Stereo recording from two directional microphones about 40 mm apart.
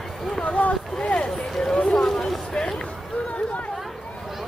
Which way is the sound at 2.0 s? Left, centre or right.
Centre.